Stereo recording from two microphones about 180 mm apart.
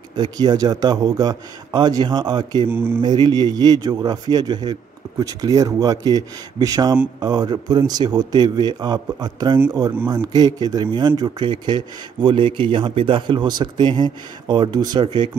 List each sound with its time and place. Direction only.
0.1 s speech: 25° right (ahead or behind)
2.7 s speech: 10° right (ahead or behind)
3.0 s speech: 25° right (ahead or behind)